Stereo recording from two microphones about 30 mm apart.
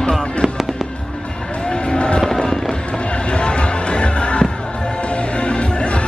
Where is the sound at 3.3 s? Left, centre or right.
Left.